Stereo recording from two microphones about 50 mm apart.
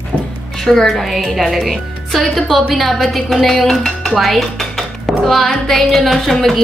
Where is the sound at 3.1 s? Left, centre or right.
Centre.